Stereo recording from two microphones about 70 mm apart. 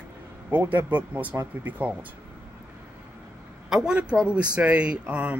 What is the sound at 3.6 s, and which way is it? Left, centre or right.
A woman's voice, centre.